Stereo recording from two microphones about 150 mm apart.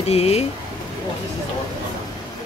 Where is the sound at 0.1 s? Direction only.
45° left (ahead or behind).